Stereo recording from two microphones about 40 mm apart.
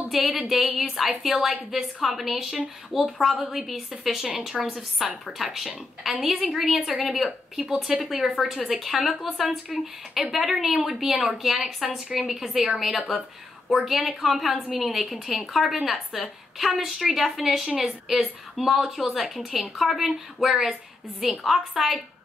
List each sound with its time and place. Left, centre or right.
0.1 s a woman's voice: centre